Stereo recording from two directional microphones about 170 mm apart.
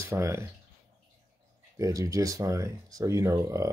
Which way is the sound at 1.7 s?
20° right (ahead or behind).